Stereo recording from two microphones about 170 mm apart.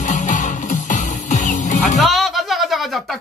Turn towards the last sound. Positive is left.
turn(degrees=0)  # may be behind; listen again after turning